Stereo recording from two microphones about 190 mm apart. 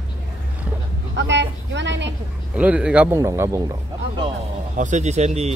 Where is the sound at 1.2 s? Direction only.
70° right (ahead or behind).